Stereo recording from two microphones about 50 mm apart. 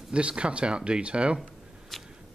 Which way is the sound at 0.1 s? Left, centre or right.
Right.